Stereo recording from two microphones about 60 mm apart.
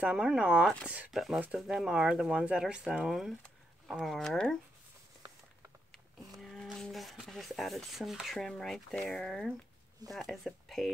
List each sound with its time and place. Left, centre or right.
0.0 s speech: centre
1.1 s speech: centre
6.3 s a sound: centre
7.2 s speech: centre